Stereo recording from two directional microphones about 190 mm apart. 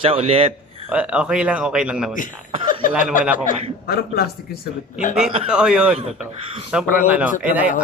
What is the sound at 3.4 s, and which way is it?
Speech, 55° left (ahead or behind).